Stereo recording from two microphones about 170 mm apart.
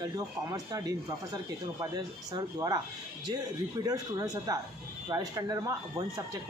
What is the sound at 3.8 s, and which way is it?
Speech, 20° right (ahead or behind).